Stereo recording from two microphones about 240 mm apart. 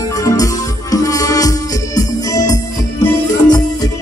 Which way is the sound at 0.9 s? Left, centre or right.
Centre.